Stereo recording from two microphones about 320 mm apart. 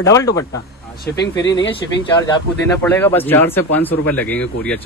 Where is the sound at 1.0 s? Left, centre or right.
Left.